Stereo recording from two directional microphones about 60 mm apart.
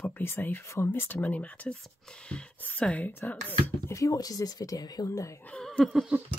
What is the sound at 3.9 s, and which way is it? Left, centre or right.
Speech, left.